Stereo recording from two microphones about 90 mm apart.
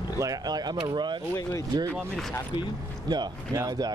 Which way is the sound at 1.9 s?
5° left (ahead or behind).